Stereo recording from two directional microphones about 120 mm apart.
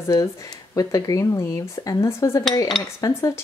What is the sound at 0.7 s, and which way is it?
Speech, 30° left (ahead or behind).